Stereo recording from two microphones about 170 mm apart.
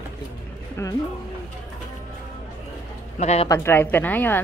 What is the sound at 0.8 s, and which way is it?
Speech, 15° left (ahead or behind).